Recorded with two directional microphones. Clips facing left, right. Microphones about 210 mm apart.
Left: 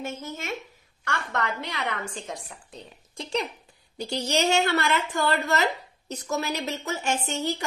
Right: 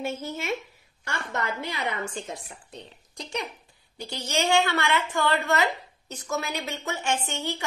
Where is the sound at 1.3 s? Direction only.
5° right (ahead or behind).